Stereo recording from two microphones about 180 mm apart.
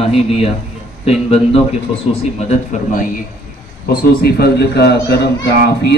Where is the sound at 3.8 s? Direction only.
60° left (ahead or behind).